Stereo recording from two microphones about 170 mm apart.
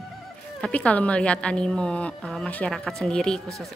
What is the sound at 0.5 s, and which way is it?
A woman's voice, 5° left (ahead or behind).